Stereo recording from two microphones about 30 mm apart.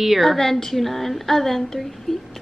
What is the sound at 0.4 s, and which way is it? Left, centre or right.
Speech, centre.